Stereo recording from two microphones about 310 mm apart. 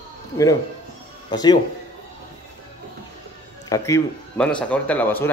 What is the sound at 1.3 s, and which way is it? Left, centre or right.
Speech, centre.